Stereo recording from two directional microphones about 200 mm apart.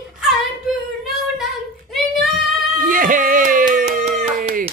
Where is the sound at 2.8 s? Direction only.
45° right (ahead or behind).